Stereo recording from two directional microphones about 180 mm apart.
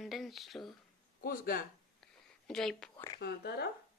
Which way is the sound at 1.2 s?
55° left (ahead or behind).